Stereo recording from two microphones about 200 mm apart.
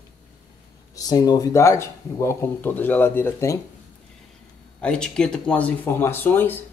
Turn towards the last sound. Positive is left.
turn(degrees=10)  # may be behind; listen again after turning